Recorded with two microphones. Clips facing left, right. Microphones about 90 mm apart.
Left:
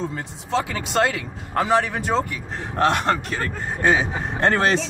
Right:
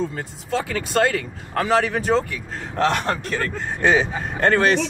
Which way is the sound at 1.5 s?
20° left (ahead or behind).